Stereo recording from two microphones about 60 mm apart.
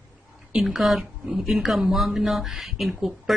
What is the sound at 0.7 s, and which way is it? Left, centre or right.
Speech, centre.